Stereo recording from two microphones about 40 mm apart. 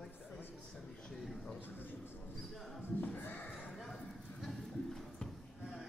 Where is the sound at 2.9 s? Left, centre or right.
Left.